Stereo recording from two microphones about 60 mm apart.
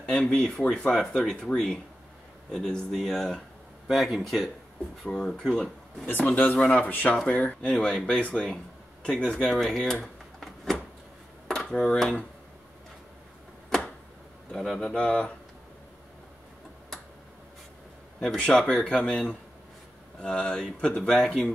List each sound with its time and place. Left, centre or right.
0.0 s speech: centre
5.1 s speech: centre
6.3 s speech: left
7.6 s speech: centre
10.4 s a sound: centre
11.4 s dishes: centre
11.7 s speech: centre
14.5 s speech: centre
18.2 s speech: centre